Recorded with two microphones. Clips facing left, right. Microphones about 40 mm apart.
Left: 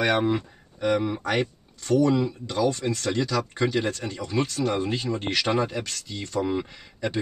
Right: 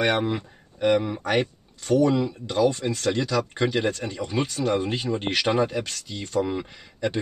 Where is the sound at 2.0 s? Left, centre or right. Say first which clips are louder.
Even; centre.